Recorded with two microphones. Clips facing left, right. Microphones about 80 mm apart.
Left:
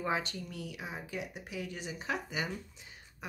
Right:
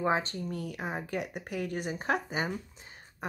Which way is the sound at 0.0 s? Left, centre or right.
Right.